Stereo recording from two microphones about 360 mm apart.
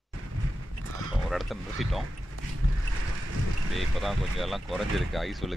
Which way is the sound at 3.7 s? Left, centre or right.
Centre.